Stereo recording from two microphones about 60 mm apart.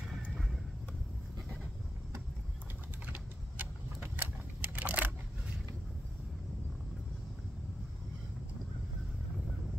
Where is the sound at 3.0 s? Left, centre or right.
Right.